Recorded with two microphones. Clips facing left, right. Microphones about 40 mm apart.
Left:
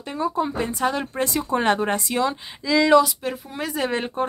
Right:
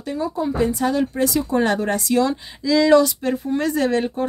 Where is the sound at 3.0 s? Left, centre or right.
Centre.